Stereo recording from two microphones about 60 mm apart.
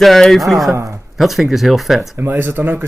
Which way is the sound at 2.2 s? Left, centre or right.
Right.